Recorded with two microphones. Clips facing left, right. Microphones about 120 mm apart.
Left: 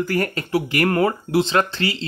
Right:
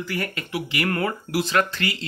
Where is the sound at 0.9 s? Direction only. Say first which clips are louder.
Left 7 dB; 25° left (ahead or behind).